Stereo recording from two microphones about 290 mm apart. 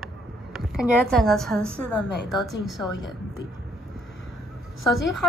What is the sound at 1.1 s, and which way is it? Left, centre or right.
A woman's voice, centre.